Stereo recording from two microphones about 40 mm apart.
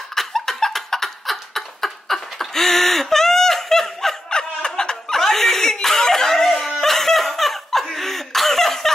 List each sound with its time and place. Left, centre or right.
0.1 s laughter: centre
4.3 s snicker: centre
5.2 s laughter: centre